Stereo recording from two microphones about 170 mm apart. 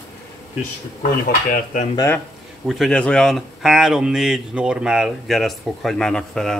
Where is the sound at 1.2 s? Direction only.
55° left (ahead or behind).